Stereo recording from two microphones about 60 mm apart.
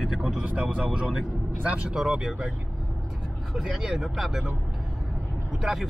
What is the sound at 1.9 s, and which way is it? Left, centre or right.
Speech, centre.